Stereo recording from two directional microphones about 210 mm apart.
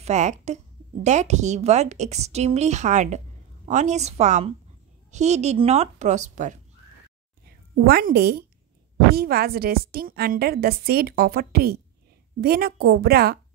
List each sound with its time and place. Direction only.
0.0 s a woman's voice: 35° right (ahead or behind)
7.7 s a woman's voice: 45° right (ahead or behind)